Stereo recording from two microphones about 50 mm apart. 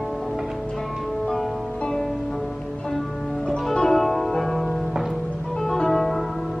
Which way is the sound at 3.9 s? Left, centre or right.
Centre.